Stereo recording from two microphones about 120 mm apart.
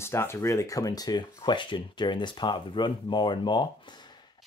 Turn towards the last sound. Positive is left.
turn(degrees=40)  # may be behind; listen again after turning